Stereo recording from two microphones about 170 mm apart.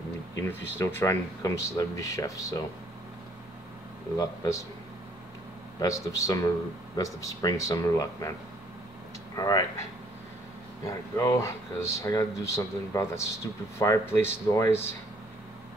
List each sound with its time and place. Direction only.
0.3 s speech: 10° left (ahead or behind)
4.2 s speech: 20° left (ahead or behind)
5.8 s speech: 20° left (ahead or behind)
9.3 s speech: 20° left (ahead or behind)
10.9 s speech: 20° left (ahead or behind)